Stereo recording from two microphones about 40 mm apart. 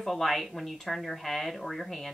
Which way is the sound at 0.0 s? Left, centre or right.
Centre.